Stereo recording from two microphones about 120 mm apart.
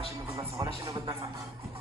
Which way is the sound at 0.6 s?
35° right (ahead or behind).